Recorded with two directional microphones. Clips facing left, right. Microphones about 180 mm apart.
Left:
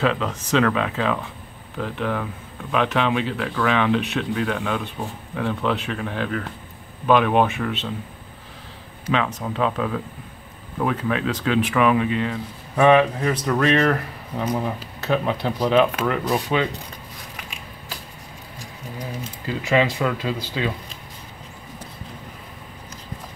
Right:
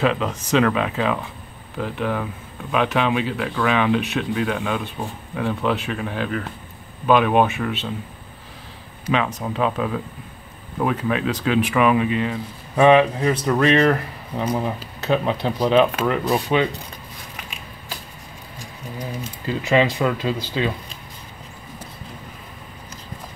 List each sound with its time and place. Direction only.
0.0 s speech: 15° right (ahead or behind)
9.1 s speech: 10° right (ahead or behind)
19.4 s speech: 25° right (ahead or behind)